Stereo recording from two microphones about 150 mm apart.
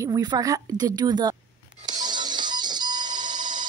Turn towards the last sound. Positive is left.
turn(degrees=-30)  # may be behind; listen again after turning